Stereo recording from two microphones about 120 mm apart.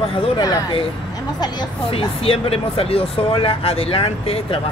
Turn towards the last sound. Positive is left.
turn(degrees=55)  # may be behind; listen again after turning